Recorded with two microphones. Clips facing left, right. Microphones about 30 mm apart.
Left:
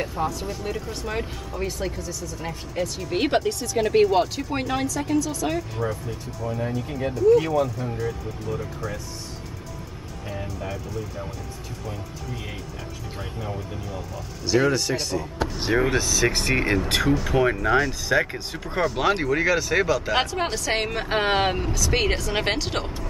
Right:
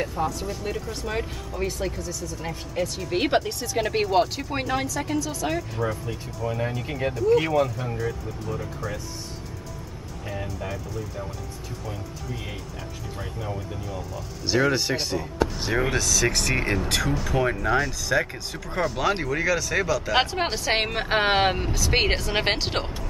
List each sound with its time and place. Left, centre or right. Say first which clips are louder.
0.0 s speech: even; centre
6.0 s a woman's voice: right 1 dB; centre
6.9 s speech: even; right
7.2 s a woman's voice: left 2 dB; centre
8.0 s speech: left 1 dB; centre
10.3 s speech: even; centre
13.4 s speech: even; centre
14.7 s a woman's voice: even; centre
15.8 s speech: even; centre
20.2 s a woman's voice: even; centre